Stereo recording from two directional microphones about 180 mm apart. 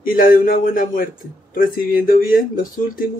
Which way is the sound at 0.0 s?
50° left (ahead or behind).